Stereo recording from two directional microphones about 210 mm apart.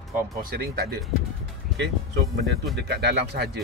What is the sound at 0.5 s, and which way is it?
Speech, 50° right (ahead or behind).